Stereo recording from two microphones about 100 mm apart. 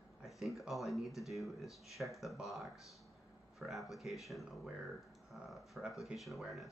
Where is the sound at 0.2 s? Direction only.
Centre (ahead or behind).